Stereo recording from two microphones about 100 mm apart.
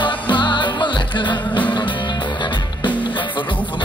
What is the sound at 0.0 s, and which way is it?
Music, 50° left (ahead or behind).